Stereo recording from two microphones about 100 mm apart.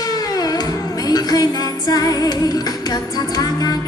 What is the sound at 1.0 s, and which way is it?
Music, 40° left (ahead or behind).